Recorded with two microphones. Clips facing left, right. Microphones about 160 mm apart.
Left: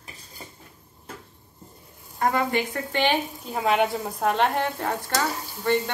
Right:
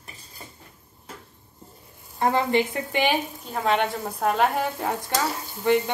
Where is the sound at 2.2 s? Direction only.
25° right (ahead or behind).